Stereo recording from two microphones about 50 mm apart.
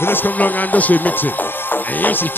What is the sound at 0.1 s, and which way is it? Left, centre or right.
Speech, left.